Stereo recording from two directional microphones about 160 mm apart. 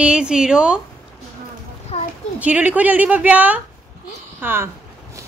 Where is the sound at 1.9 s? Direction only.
35° left (ahead or behind).